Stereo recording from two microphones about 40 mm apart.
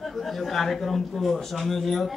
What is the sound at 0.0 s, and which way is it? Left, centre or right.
A man's voice, centre.